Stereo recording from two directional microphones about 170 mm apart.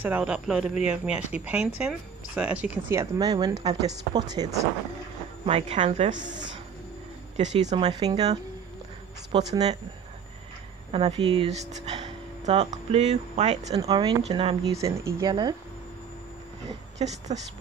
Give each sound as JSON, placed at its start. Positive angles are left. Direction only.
{"t": 0.0, "sound": "speech", "side_deg": -10}
{"t": 5.4, "sound": "speech", "side_deg": -40}
{"t": 7.3, "sound": "speech", "side_deg": -40}
{"t": 8.0, "sound": "speech", "side_deg": -25}
{"t": 9.3, "sound": "speech", "side_deg": -30}
{"t": 10.9, "sound": "speech", "side_deg": -35}
{"t": 14.8, "sound": "speech", "side_deg": -15}
{"t": 16.6, "sound": "a woman's voice", "side_deg": -40}